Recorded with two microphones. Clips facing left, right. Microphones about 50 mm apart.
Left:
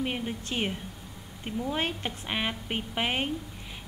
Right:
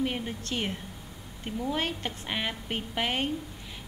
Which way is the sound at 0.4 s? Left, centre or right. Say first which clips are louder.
Left 1 dB; centre.